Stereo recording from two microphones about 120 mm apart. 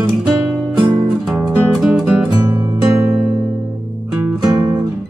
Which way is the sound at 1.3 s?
15° right (ahead or behind).